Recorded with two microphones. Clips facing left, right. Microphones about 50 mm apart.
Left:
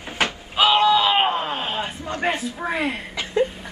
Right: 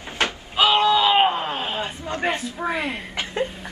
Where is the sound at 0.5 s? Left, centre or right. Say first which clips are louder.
Left 1 dB; centre.